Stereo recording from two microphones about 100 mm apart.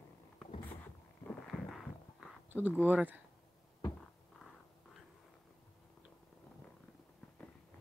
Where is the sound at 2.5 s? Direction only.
15° right (ahead or behind).